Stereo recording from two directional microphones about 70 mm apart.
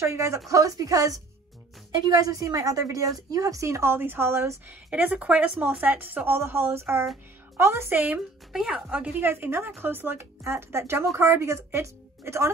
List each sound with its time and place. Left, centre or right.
0.0 s a woman's voice: right
0.5 s speech: right
1.9 s a woman's voice: right
4.6 s a woman's voice: right
7.9 s a woman's voice: right
8.5 s speech: centre
9.2 s a woman's voice: right